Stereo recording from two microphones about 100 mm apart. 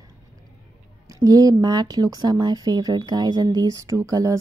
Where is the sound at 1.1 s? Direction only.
35° right (ahead or behind).